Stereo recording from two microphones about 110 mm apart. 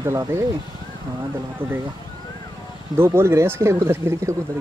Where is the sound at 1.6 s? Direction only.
20° right (ahead or behind).